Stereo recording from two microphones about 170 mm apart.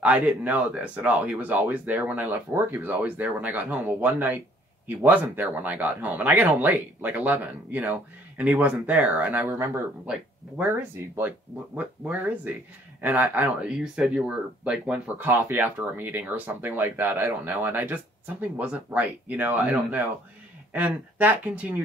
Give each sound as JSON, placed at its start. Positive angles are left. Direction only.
{"t": 0.0, "sound": "speech", "side_deg": -10}
{"t": 10.6, "sound": "speech", "side_deg": -15}